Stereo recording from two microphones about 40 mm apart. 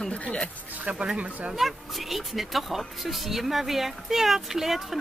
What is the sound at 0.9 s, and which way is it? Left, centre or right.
Speech, right.